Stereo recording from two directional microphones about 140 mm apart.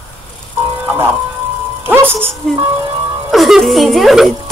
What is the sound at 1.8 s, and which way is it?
Speech, 15° right (ahead or behind).